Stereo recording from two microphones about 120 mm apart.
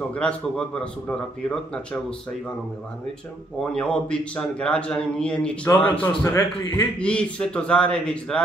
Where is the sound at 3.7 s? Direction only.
5° left (ahead or behind).